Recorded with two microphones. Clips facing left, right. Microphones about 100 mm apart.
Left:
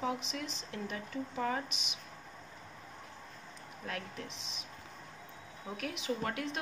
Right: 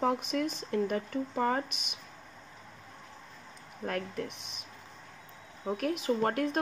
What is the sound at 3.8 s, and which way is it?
Speech, 45° right (ahead or behind).